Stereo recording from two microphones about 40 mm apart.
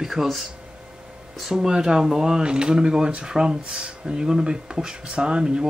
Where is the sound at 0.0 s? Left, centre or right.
Centre.